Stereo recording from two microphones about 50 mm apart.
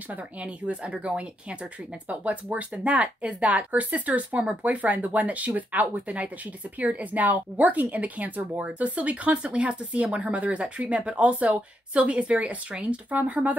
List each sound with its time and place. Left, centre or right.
0.1 s speech: right